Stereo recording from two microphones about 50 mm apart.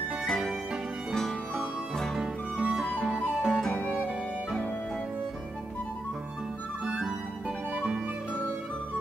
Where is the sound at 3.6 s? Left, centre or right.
Centre.